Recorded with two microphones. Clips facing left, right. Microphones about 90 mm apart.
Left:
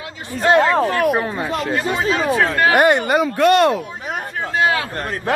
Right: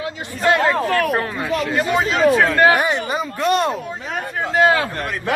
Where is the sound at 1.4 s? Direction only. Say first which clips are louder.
Even; 35° left (ahead or behind).